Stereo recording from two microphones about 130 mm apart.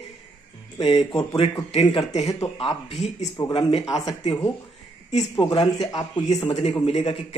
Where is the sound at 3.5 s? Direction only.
40° left (ahead or behind).